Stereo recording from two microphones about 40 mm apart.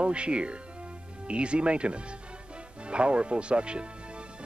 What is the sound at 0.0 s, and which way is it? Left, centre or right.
Speech, right.